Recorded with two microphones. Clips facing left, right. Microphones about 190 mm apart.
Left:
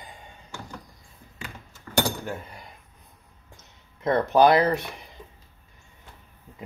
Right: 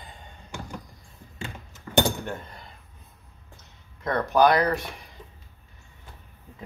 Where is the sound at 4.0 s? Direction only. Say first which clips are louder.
Left 2 dB; 25° left (ahead or behind).